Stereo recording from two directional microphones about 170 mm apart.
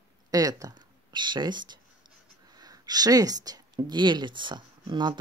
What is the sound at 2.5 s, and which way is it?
Speech, 20° right (ahead or behind).